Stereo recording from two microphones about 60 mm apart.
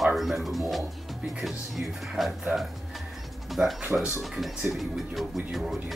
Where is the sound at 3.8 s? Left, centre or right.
Centre.